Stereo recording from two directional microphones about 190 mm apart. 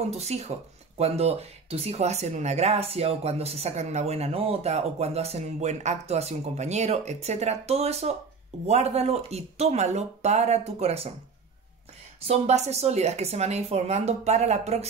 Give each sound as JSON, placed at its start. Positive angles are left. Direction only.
{"t": 0.1, "sound": "speech", "side_deg": -35}
{"t": 12.3, "sound": "speech", "side_deg": -35}